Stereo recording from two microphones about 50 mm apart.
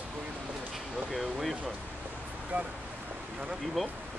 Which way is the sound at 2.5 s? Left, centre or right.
Right.